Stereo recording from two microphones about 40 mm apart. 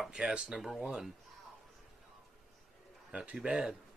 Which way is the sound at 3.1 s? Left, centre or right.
Right.